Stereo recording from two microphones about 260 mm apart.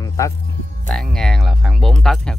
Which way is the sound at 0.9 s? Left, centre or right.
Centre.